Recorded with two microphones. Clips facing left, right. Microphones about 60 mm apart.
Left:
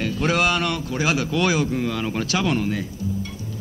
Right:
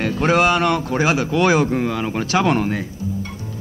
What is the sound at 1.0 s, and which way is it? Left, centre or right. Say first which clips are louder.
Speech: right 3 dB; right.